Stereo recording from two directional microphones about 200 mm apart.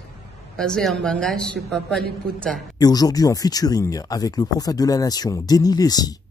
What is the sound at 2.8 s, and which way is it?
Speech, 20° left (ahead or behind).